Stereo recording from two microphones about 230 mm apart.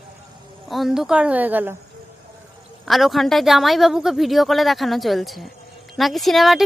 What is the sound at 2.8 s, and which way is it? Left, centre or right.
A woman's voice, centre.